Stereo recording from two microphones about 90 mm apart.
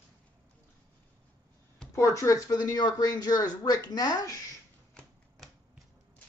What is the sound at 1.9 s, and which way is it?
Speech, 35° left (ahead or behind).